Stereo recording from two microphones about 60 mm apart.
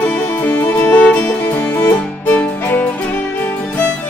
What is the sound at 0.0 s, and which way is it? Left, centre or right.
Music, left.